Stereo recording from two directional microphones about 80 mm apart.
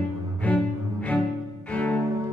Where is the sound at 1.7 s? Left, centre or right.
Centre.